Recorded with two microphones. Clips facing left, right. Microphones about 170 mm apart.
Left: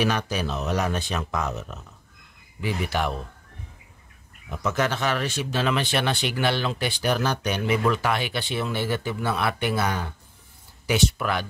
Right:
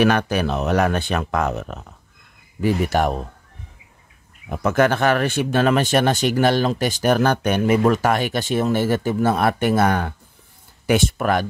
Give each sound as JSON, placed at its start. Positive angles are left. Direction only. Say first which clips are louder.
{"t": 0.0, "sound": "speech", "louder": "right 7 dB", "side_deg": -60}
{"t": 2.6, "sound": "speech", "louder": "right 8 dB", "side_deg": -45}
{"t": 4.5, "sound": "speech", "louder": "right 8 dB", "side_deg": -55}